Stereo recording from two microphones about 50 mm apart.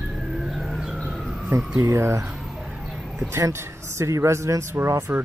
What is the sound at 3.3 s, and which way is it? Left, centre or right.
Speech, right.